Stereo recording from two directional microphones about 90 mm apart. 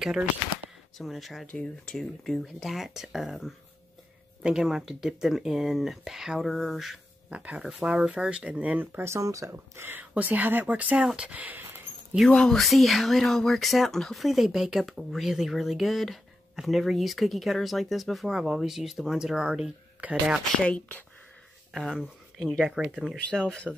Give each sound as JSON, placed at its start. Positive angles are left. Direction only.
{"t": 0.9, "sound": "speech", "side_deg": 0}
{"t": 1.5, "sound": "speech", "side_deg": 10}
{"t": 11.1, "sound": "a sound", "side_deg": -10}
{"t": 12.3, "sound": "speech", "side_deg": 10}
{"t": 20.6, "sound": "speech", "side_deg": 15}
{"t": 21.7, "sound": "speech", "side_deg": -5}
{"t": 22.8, "sound": "speech", "side_deg": -15}
{"t": 23.4, "sound": "speech", "side_deg": 10}